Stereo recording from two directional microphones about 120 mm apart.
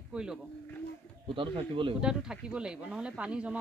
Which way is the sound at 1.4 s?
45° right (ahead or behind).